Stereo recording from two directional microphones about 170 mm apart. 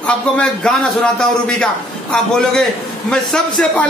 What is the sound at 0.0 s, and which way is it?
A man's voice, 5° left (ahead or behind).